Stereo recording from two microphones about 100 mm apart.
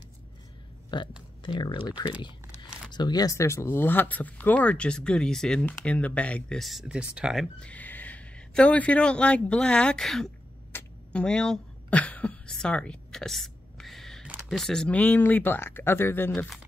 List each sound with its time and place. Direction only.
0.8 s a sound: 50° left (ahead or behind)
1.4 s speech: 50° left (ahead or behind); by 6.6 s 15° left (ahead or behind)
6.6 s speech: 5° right (ahead or behind)
7.6 s speech: 15° left (ahead or behind)
10.7 s tick-tock: 20° left (ahead or behind)
11.1 s a sound: 10° left (ahead or behind)
14.5 s speech: 5° left (ahead or behind); by 16.3 s 20° left (ahead or behind)